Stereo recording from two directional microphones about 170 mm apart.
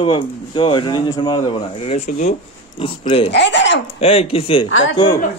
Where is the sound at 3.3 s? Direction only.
90° left.